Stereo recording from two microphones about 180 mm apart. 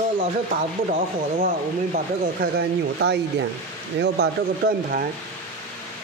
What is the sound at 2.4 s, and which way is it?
Speech, 65° right (ahead or behind).